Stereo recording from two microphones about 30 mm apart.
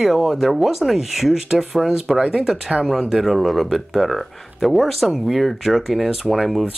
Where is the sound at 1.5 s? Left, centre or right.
Centre.